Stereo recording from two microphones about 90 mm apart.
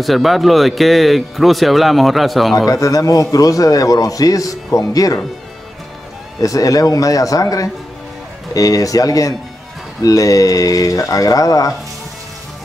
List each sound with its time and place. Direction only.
0.0 s speech: centre (ahead or behind)
2.5 s a man's voice: 40° left (ahead or behind)
6.4 s a man's voice: 40° left (ahead or behind)